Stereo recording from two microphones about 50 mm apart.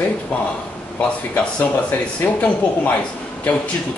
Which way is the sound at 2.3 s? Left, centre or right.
Left.